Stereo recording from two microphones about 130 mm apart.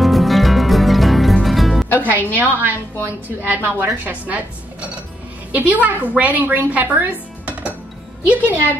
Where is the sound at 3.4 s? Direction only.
15° right (ahead or behind).